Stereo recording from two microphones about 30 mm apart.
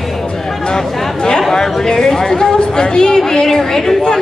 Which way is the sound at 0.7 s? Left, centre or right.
Left.